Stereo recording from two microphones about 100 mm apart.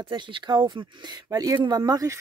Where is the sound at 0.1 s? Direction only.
50° right (ahead or behind).